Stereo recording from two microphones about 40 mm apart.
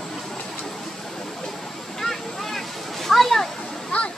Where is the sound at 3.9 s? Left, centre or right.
Left.